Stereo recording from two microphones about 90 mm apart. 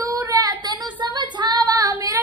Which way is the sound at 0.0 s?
40° right (ahead or behind).